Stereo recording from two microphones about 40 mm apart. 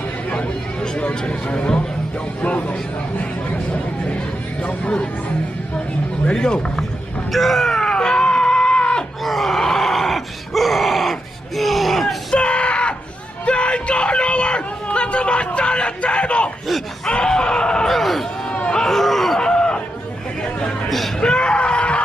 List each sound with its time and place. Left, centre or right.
0.9 s speech: left
3.2 s a sound: left
4.6 s speech: left
6.3 s speech: centre
7.3 s screaming: centre; by 9.0 s left
9.2 s groan: centre
12.4 s yell: left
13.5 s a sound: left
17.1 s screaming: left
17.8 s a sound: centre
18.9 s groan: centre
19.4 s a sound: left
21.2 s screaming: left